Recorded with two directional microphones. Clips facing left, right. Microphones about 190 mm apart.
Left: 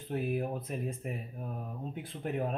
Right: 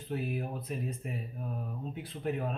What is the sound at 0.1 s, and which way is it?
Speech, 50° left (ahead or behind).